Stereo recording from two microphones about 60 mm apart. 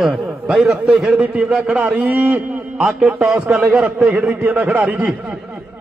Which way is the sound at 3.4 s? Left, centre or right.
Right.